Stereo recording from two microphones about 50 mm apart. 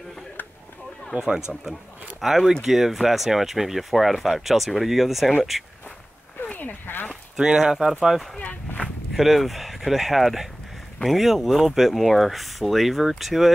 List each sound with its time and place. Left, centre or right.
1.1 s speech: centre
6.4 s sheep: left
7.3 s speech: centre